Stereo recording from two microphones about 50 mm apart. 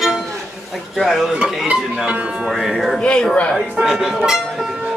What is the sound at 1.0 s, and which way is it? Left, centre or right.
Dishes, centre.